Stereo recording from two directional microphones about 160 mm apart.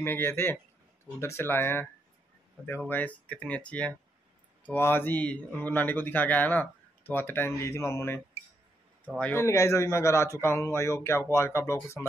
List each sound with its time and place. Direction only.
0.0 s a man's voice: 15° left (ahead or behind)
2.9 s a man's voice: 10° left (ahead or behind)
9.2 s a man's voice: 15° left (ahead or behind)